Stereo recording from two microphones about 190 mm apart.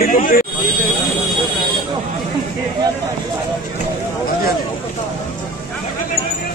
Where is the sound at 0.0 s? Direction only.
45° left (ahead or behind).